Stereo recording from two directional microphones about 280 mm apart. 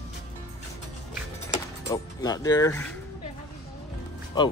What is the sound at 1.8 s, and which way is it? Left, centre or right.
Speech, centre.